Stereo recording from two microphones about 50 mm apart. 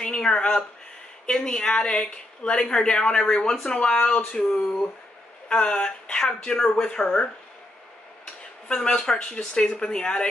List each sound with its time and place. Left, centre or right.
0.0 s a woman's voice: centre
8.6 s speech: centre